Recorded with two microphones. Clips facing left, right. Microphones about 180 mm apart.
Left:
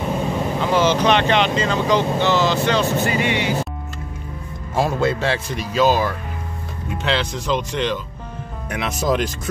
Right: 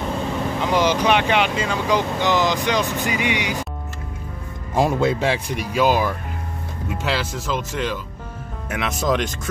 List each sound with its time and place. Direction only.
0.1 s vehicle: 15° left (ahead or behind)
0.6 s speech: 15° right (ahead or behind)
4.7 s speech: 15° right (ahead or behind); by 9.3 s centre (ahead or behind)